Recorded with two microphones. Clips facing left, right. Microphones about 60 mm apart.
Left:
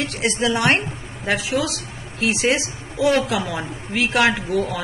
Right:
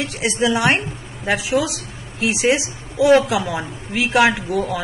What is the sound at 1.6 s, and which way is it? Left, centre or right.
A woman's voice, centre.